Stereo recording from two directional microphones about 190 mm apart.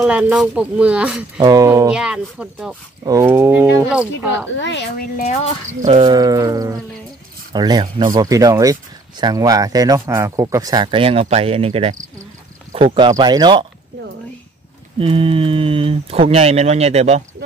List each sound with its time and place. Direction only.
0.0 s speech: 5° right (ahead or behind)
1.4 s speech: 20° right (ahead or behind)
1.9 s speech: 5° right (ahead or behind)
4.6 s speech: 65° left (ahead or behind); by 5.3 s 50° left (ahead or behind)
5.9 s speech: 25° right (ahead or behind)
15.0 s speech: 30° right (ahead or behind)